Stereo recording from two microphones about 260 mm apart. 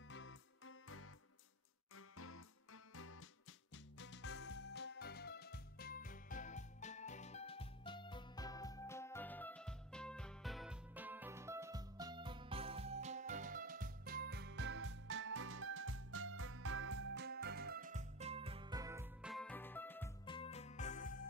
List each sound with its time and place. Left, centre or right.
0.1 s music: left; by 19.3 s centre
19.3 s music: centre
20.2 s music: left